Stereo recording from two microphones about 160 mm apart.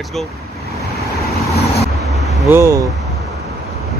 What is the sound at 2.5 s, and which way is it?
Speech, 20° right (ahead or behind).